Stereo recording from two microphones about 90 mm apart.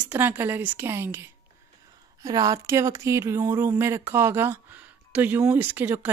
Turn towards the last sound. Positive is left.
turn(degrees=-20)  # may be behind; listen again after turning